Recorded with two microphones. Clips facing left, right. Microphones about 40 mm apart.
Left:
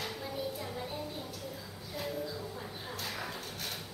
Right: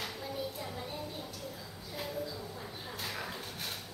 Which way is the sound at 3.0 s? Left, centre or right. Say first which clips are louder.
Even; centre.